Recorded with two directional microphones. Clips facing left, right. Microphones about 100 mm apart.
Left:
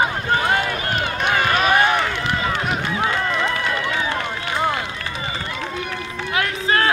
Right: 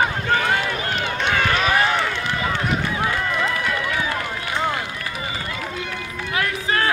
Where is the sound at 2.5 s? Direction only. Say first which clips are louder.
Left 1 dB; 20° left (ahead or behind).